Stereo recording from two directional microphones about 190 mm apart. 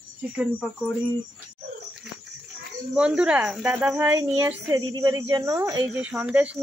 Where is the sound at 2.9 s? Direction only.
5° right (ahead or behind).